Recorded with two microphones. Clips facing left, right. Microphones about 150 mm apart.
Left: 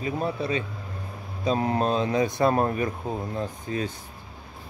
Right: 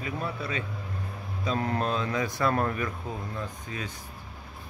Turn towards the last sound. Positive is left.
turn(degrees=35)  # may be behind; listen again after turning